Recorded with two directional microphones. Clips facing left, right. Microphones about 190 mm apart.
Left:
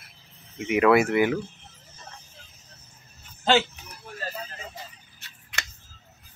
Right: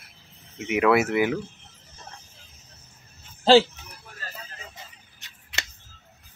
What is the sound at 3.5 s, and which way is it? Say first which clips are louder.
Speech: right 6 dB; 30° right (ahead or behind).